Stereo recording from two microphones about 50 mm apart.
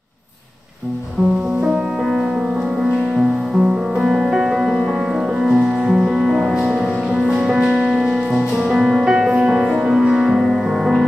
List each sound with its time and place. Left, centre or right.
2.8 s music: centre
9.3 s music: centre